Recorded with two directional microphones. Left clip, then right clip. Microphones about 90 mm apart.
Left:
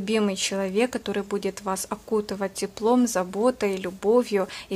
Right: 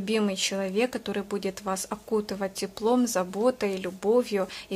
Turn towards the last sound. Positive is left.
turn(degrees=30)  # may be behind; listen again after turning